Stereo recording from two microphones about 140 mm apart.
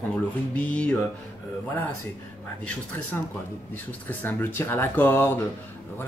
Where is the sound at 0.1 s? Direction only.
10° left (ahead or behind).